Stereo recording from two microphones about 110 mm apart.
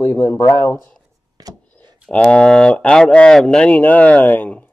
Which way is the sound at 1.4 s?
35° right (ahead or behind).